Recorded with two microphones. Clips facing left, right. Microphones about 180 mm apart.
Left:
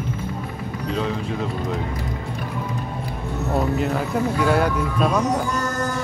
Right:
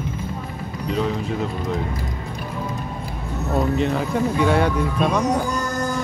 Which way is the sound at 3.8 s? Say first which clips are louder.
Right 1 dB; 5° left (ahead or behind).